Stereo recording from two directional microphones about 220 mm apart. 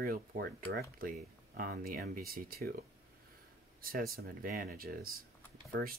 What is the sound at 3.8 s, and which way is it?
Speech, 40° right (ahead or behind).